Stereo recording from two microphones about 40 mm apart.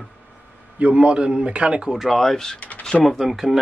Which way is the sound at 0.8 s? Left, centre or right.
Right.